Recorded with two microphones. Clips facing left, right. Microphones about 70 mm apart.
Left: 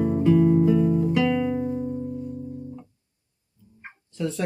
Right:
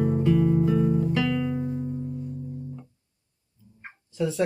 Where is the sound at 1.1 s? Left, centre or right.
Centre.